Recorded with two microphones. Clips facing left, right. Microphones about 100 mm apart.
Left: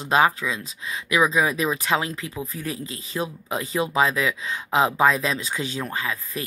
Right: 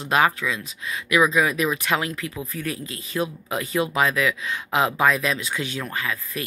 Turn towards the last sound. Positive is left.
turn(degrees=30)  # may be behind; listen again after turning